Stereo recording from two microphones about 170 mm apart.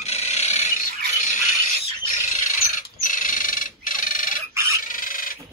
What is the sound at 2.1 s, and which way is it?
Bird, 50° left (ahead or behind).